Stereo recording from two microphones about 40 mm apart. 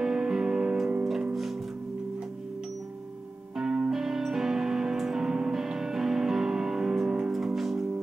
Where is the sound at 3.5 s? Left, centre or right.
Right.